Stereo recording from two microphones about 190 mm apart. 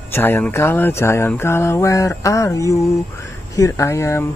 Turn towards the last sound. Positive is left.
turn(degrees=15)  # may be behind; listen again after turning